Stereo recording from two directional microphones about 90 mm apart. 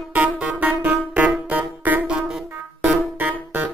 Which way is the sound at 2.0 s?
10° right (ahead or behind).